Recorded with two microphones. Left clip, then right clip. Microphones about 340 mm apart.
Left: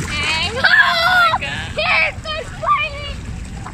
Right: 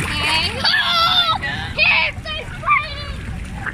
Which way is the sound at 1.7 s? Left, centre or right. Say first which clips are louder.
Right 1 dB; left.